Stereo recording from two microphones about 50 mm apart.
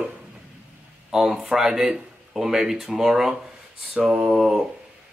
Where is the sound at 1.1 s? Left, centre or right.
Centre.